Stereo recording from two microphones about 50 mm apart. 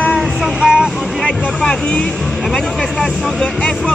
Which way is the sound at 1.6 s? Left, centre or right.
Centre.